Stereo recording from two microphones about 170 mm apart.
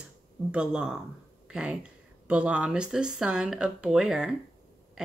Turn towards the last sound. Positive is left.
turn(degrees=-5)  # may be behind; listen again after turning